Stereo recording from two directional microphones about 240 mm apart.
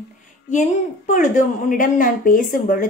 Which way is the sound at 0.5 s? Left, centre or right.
Left.